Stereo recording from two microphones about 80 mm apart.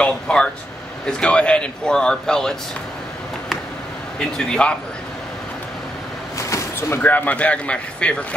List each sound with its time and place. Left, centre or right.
0.0 s speech: centre
4.4 s speech: centre
6.3 s a sound: left
7.0 s speech: left